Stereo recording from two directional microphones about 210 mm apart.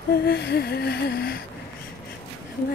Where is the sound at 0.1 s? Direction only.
50° left (ahead or behind).